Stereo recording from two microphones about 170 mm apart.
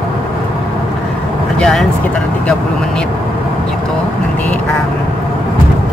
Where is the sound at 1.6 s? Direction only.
5° left (ahead or behind).